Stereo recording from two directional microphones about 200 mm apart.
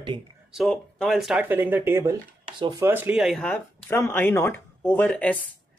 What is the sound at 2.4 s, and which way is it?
Speech, 25° right (ahead or behind).